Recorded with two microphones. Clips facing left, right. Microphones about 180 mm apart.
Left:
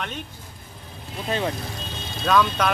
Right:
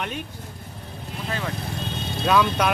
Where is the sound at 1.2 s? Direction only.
25° left (ahead or behind).